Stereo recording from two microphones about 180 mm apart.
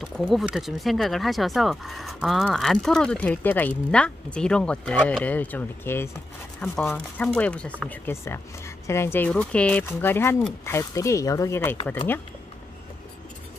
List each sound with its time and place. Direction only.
0.0 s speech: centre (ahead or behind); by 11.7 s 15° left (ahead or behind)